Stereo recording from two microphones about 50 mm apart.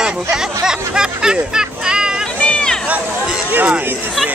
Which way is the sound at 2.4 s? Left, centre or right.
Left.